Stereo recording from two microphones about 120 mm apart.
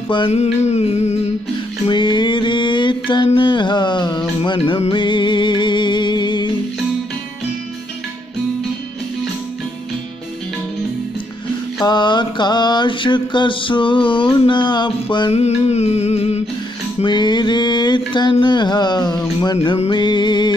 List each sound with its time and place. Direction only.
0.3 s a sound: 65° left (ahead or behind)
1.9 s mantra: 40° left (ahead or behind)
3.3 s music: 40° left (ahead or behind)
11.8 s mantra: 40° left (ahead or behind)
15.3 s a sound: 65° left (ahead or behind)
17.0 s mantra: 40° left (ahead or behind)